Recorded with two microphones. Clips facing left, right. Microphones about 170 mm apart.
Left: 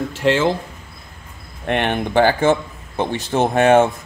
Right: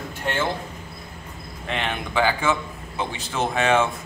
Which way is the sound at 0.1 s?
90° left.